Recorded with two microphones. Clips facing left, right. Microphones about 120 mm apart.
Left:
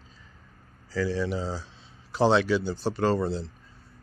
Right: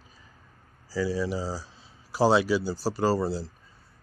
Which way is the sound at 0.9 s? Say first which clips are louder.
Even; 5° right (ahead or behind).